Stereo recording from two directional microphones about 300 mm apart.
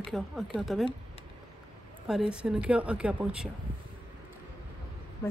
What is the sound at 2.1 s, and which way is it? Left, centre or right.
Speech, centre.